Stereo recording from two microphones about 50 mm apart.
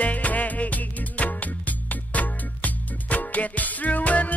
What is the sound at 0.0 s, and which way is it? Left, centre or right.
Music, left.